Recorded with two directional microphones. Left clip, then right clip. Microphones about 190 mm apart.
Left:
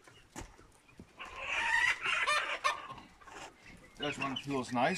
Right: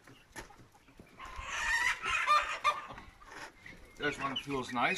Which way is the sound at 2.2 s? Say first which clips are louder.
Right 5 dB; 60° left (ahead or behind).